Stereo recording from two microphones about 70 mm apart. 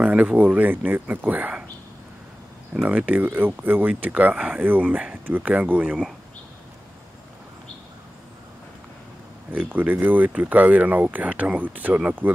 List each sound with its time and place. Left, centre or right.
0.0 s speech: centre
2.7 s speech: centre
3.3 s speech: right
9.5 s speech: right